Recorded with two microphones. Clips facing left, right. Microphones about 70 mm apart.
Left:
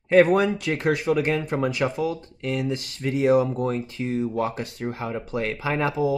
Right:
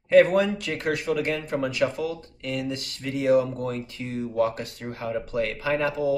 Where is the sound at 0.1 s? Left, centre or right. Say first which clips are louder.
Left 1 dB; left.